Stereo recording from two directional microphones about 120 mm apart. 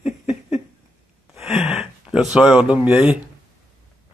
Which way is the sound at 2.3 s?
5° right (ahead or behind).